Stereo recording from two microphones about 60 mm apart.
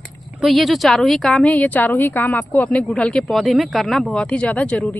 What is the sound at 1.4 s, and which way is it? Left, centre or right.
A woman's voice, left.